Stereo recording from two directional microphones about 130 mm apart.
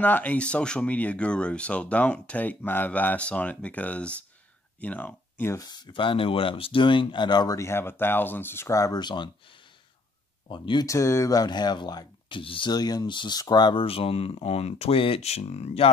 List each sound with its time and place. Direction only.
0.0 s speech: 10° left (ahead or behind)
5.6 s speech: 35° left (ahead or behind)
10.5 s speech: 40° left (ahead or behind)
10.9 s speech: 20° left (ahead or behind); by 15.9 s 55° left (ahead or behind)